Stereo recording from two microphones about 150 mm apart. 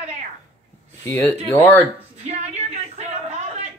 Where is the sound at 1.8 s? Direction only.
45° right (ahead or behind).